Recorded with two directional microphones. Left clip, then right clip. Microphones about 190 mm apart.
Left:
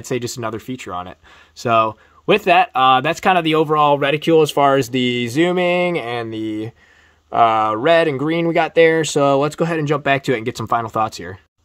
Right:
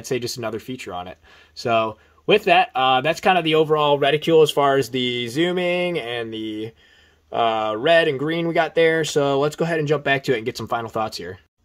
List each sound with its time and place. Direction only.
0.0 s speech: 35° left (ahead or behind)